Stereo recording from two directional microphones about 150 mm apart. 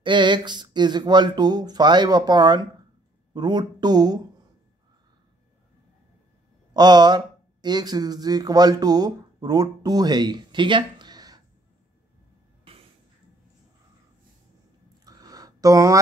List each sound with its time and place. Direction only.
0.0 s speech: 30° right (ahead or behind)
6.7 s speech: 30° right (ahead or behind)
15.0 s a sound: 25° right (ahead or behind)